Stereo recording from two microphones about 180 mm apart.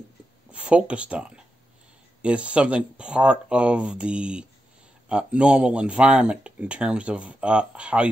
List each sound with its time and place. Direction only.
0.5 s speech: 5° right (ahead or behind)